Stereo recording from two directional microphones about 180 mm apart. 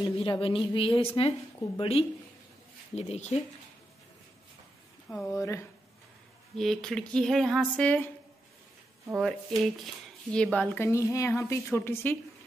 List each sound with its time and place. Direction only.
0.2 s a woman's voice: 30° left (ahead or behind)
5.1 s a woman's voice: 20° left (ahead or behind)
6.5 s speech: centre (ahead or behind)
9.2 s a woman's voice: centre (ahead or behind)